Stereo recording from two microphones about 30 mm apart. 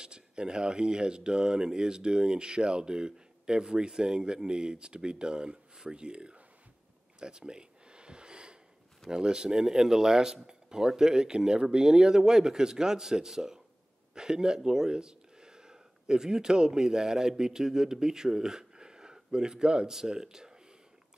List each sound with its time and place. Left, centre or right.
0.0 s speech: right
7.2 s a sound: right
9.1 s speech: right